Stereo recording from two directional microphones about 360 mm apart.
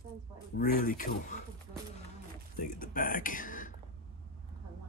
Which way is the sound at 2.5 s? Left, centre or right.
Left.